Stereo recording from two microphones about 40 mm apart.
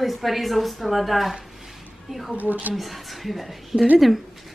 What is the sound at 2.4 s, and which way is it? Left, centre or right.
Speech, right.